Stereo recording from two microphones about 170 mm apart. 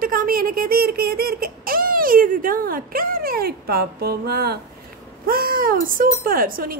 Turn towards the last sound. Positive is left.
turn(degrees=-55)  # may be behind; listen again after turning